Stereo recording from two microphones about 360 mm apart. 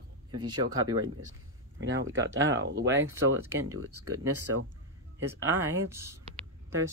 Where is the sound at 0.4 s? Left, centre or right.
Centre.